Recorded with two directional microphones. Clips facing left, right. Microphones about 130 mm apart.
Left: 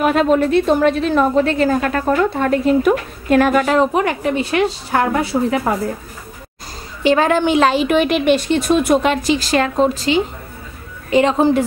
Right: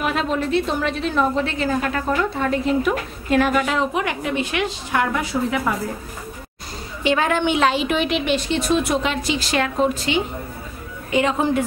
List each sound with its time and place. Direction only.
0.0 s a woman's voice: 50° left (ahead or behind); by 5.8 s 35° left (ahead or behind)
7.0 s a woman's voice: 40° left (ahead or behind)
9.5 s a woman's voice: 35° left (ahead or behind)